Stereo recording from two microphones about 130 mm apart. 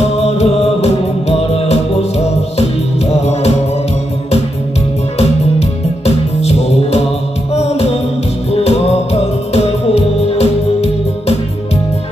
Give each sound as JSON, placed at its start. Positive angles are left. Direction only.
{"t": 0.2, "sound": "music", "side_deg": 55}
{"t": 5.2, "sound": "music", "side_deg": 55}